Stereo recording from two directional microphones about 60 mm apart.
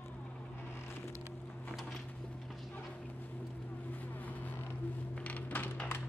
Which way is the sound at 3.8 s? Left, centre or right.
Left.